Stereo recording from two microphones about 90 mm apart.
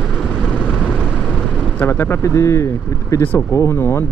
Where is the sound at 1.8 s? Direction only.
25° left (ahead or behind).